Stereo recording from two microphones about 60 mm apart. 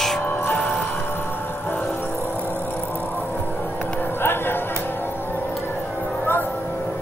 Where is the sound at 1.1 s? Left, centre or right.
Left.